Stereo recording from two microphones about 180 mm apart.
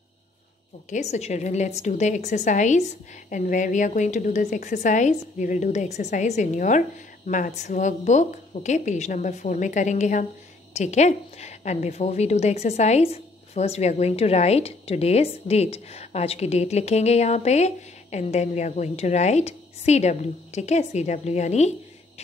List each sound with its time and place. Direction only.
0.8 s a woman's voice: 40° left (ahead or behind)